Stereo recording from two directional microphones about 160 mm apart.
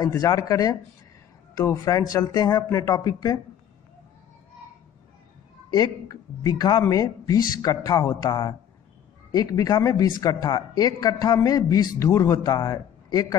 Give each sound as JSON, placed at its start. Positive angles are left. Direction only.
{"t": 0.0, "sound": "speech", "side_deg": 20}
{"t": 5.7, "sound": "speech", "side_deg": 25}